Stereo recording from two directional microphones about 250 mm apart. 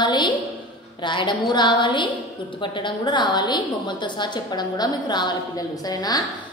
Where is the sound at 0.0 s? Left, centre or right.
Centre.